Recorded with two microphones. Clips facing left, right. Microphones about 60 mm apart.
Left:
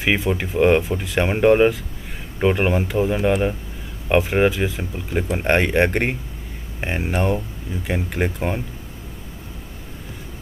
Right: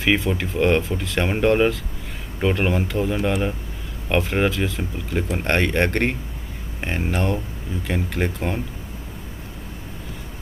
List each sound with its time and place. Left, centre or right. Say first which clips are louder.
0.0 s speech: even; centre